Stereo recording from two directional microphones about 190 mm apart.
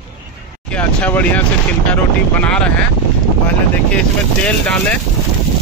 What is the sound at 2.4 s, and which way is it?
Speech, 5° left (ahead or behind).